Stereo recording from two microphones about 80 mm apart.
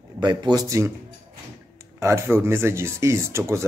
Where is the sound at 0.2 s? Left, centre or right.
Right.